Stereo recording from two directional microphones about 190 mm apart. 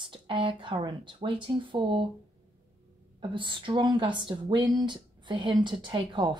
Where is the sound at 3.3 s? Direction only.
25° right (ahead or behind).